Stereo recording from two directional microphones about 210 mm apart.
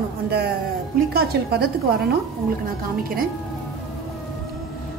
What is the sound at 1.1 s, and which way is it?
Speech, 50° right (ahead or behind).